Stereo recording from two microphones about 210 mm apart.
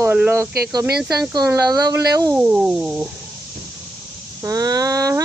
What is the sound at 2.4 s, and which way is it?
Music, 5° right (ahead or behind).